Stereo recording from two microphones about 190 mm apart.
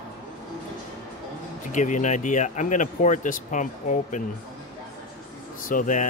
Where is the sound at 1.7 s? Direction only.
40° left (ahead or behind).